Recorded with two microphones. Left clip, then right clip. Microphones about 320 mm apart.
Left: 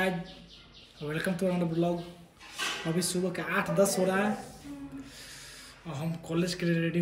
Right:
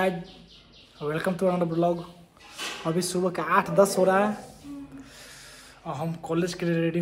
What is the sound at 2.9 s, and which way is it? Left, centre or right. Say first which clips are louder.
Speech: right 5 dB; right.